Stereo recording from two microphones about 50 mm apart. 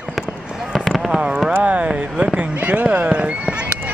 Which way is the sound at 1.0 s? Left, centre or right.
Centre.